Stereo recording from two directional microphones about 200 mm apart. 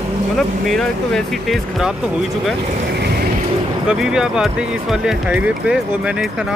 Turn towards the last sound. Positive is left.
turn(degrees=-5)  # may be behind; listen again after turning